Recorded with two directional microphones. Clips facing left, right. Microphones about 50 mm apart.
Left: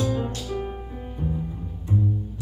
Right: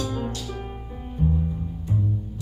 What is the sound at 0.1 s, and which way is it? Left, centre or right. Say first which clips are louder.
Music: left 2 dB; centre.